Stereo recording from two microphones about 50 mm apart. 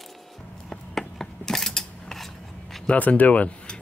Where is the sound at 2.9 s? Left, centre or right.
Left.